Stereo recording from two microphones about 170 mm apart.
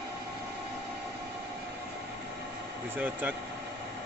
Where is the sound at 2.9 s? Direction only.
10° right (ahead or behind).